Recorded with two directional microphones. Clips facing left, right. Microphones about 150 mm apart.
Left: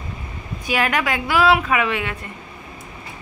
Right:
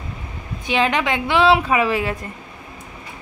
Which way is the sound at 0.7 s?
25° right (ahead or behind).